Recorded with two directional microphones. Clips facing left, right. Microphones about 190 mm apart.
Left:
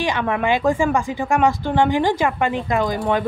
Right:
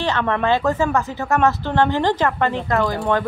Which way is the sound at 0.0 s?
10° left (ahead or behind).